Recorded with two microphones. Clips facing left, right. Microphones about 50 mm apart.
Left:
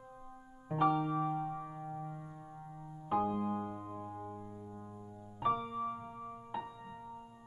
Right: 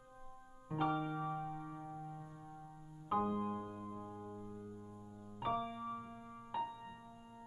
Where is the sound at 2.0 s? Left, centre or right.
Left.